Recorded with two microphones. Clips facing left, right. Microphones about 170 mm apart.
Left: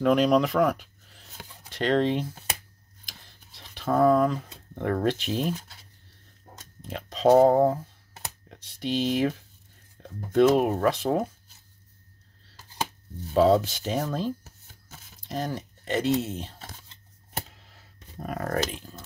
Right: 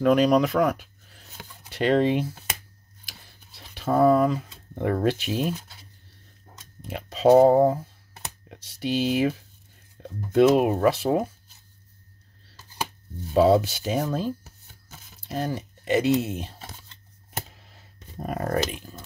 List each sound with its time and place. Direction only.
0.0 s speech: centre (ahead or behind)
3.1 s a sound: 10° right (ahead or behind)
6.8 s speech: 10° right (ahead or behind)
13.3 s rub: 10° right (ahead or behind)
18.2 s speech: 25° right (ahead or behind)
18.7 s speech: 10° right (ahead or behind)